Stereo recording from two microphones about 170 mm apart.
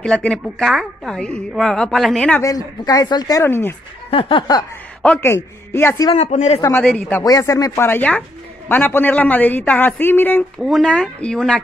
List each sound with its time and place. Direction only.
0.0 s a woman's voice: 5° left (ahead or behind)
2.4 s a woman's voice: 20° left (ahead or behind)
4.1 s a woman's voice: 30° left (ahead or behind)
5.0 s a man's voice: 10° left (ahead or behind)
6.1 s speech: 40° left (ahead or behind)
6.6 s a man's voice: 10° left (ahead or behind)
7.2 s a man's voice: 20° left (ahead or behind)
10.6 s a woman's voice: centre (ahead or behind)